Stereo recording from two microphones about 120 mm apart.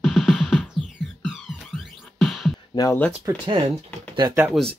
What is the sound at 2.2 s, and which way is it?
Music, centre (ahead or behind).